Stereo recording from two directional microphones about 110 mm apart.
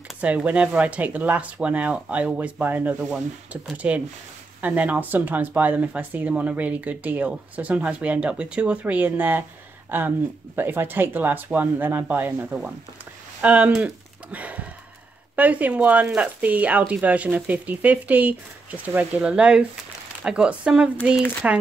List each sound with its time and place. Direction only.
0.2 s speech: 10° right (ahead or behind)